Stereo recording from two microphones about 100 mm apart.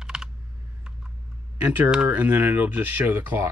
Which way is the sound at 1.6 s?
15° right (ahead or behind).